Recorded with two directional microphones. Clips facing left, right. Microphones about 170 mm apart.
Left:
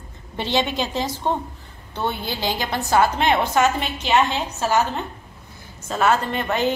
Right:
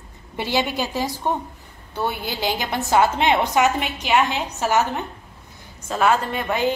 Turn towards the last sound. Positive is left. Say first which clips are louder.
# even
turn(degrees=-10)  # may be behind; listen again after turning